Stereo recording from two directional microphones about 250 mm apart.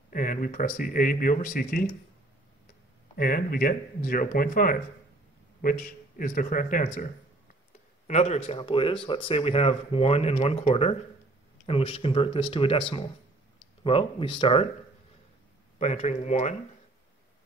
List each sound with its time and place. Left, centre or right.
0.1 s speech: left
3.2 s speech: left
8.1 s speech: left
15.8 s speech: left